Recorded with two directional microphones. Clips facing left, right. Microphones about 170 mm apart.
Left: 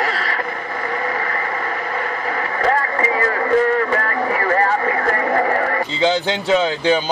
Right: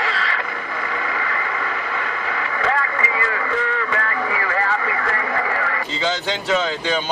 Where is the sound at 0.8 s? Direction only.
40° left (ahead or behind).